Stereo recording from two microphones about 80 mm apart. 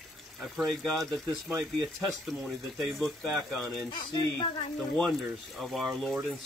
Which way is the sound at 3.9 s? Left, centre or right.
Left.